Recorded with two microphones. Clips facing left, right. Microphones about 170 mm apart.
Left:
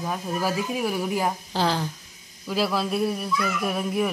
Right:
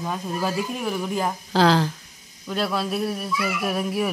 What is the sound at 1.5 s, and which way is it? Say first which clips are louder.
Speech: right 10 dB; 90° right.